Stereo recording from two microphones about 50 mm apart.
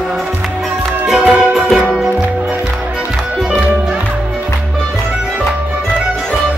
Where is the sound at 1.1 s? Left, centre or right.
Right.